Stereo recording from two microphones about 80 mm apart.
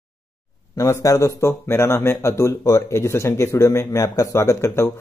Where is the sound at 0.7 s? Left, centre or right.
Left.